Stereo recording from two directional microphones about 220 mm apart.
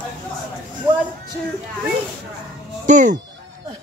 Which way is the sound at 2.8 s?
35° right (ahead or behind).